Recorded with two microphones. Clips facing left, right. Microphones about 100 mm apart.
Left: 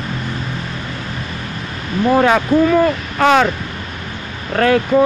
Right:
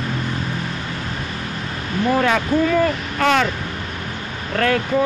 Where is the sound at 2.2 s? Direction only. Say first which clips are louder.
Left 6 dB; 30° left (ahead or behind).